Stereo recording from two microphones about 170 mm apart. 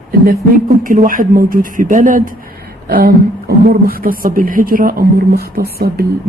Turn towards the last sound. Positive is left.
turn(degrees=-60)  # may be behind; listen again after turning